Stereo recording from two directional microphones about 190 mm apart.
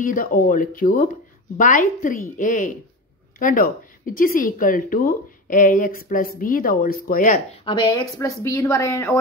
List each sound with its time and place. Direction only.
0.0 s speech: 45° left (ahead or behind)
7.6 s speech: 25° left (ahead or behind)